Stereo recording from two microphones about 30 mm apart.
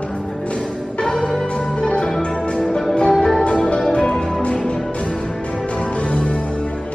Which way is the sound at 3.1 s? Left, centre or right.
Centre.